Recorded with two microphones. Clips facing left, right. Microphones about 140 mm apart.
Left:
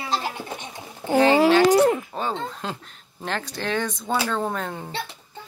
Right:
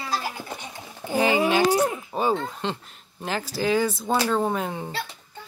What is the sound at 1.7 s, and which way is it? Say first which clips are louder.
Speech: left 5 dB; 70° left (ahead or behind).